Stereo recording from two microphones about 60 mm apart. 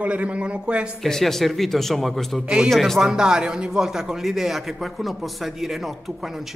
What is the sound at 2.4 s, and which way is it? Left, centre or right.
Speech, centre.